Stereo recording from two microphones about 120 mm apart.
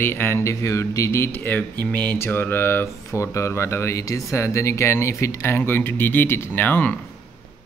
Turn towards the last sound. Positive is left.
turn(degrees=15)  # may be behind; listen again after turning